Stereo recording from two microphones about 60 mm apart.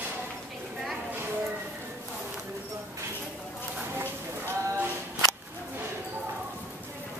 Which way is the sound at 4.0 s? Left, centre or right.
Right.